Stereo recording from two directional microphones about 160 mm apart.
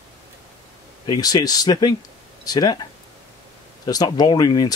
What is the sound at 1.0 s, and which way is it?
Speech, 25° left (ahead or behind).